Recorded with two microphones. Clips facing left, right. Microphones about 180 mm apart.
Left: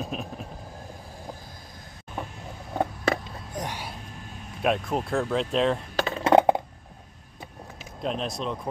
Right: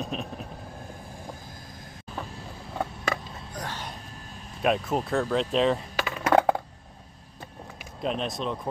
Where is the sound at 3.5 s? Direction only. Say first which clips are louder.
Left 3 dB; 15° left (ahead or behind).